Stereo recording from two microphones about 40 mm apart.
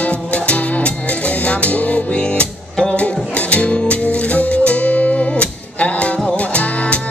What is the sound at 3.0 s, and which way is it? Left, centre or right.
Music, left.